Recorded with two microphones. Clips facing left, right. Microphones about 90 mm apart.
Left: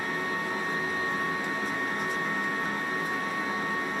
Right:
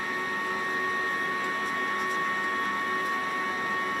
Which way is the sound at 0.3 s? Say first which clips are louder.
Even; centre (ahead or behind).